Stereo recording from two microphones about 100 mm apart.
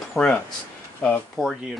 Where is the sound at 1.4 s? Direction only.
Centre (ahead or behind).